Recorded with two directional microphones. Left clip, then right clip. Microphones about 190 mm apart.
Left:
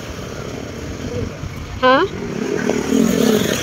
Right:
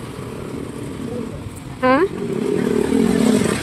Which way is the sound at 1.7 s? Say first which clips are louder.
Left 3 dB; 15° right (ahead or behind).